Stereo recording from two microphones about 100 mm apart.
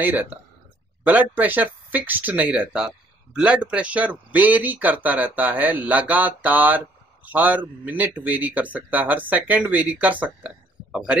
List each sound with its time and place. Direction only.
0.0 s speech: 15° right (ahead or behind)